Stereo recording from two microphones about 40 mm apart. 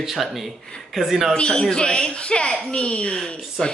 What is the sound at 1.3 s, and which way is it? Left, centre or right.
A woman's voice, centre.